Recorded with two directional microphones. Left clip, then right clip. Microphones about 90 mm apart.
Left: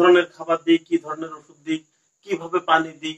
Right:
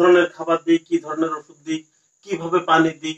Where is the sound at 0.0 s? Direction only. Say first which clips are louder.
Right 1 dB; 30° right (ahead or behind).